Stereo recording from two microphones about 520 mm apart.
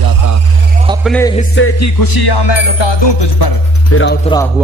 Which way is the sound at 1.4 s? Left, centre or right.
Left.